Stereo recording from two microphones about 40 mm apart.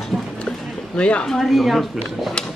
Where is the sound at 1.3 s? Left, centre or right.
Centre.